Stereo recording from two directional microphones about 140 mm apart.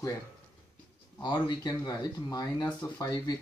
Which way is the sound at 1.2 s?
30° left (ahead or behind).